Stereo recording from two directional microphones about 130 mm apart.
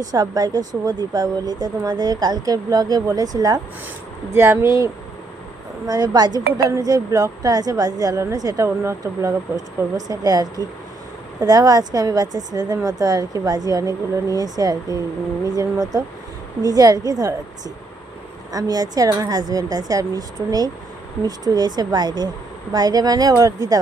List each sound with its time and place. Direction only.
0.1 s a woman's voice: 30° right (ahead or behind)